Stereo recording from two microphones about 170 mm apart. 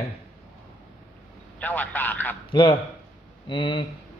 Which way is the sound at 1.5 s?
10° left (ahead or behind).